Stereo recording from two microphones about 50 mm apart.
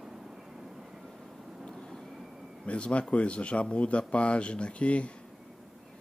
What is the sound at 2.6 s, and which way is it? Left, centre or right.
Speech, left.